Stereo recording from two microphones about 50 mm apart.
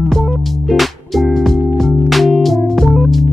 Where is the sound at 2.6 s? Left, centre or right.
Centre.